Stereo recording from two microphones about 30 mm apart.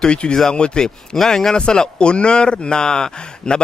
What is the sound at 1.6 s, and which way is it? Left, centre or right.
Speech, left.